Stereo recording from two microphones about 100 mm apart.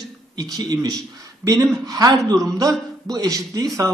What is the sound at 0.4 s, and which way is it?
Speech, 40° right (ahead or behind).